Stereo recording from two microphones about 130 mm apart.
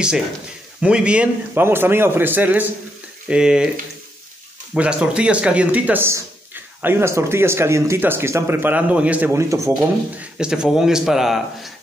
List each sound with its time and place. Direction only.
0.7 s speech: 5° right (ahead or behind)
4.7 s speech: 10° right (ahead or behind)
9.3 s speech: 20° right (ahead or behind)
10.1 s speech: 5° right (ahead or behind)